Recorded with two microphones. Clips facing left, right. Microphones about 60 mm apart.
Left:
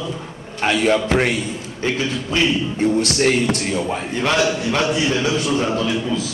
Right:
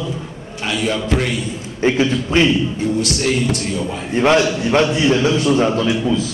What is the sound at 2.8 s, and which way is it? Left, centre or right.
A man's voice, left.